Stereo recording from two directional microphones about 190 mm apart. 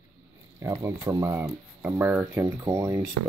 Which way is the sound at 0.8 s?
10° right (ahead or behind).